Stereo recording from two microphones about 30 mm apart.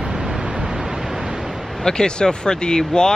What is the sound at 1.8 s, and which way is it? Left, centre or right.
Speech, left.